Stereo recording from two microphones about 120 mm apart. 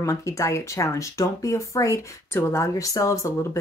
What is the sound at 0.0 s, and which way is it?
Speech, 25° left (ahead or behind).